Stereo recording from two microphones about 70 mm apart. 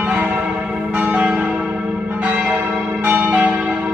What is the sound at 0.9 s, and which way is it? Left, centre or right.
Change ringing, centre.